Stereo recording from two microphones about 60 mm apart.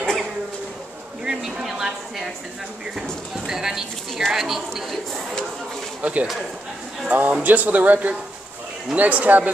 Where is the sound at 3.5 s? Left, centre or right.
Centre.